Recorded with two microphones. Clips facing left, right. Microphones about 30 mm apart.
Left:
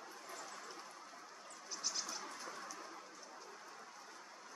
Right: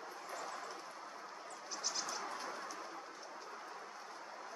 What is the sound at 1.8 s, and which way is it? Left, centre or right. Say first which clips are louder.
Vehicle: right 2 dB; centre.